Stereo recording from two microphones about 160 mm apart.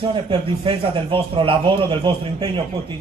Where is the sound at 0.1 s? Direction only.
35° right (ahead or behind).